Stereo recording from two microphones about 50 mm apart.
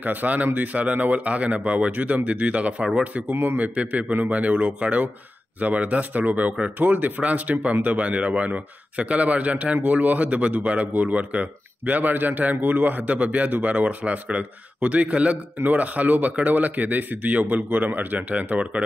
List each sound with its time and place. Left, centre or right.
0.0 s speech: right